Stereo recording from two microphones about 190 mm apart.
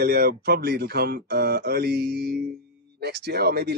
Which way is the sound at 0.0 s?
55° right (ahead or behind).